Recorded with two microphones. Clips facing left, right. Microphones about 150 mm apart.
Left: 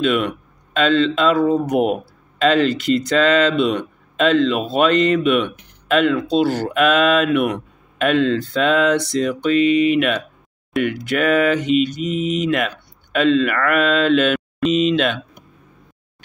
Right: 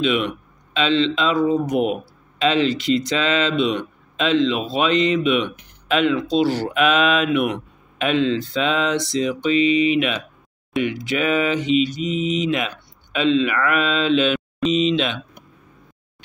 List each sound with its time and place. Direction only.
0.0 s speech: 50° left (ahead or behind)
12.0 s mantra: centre (ahead or behind)
12.4 s speech: 55° left (ahead or behind)